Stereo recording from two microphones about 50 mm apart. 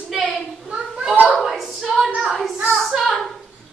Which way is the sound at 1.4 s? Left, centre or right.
Centre.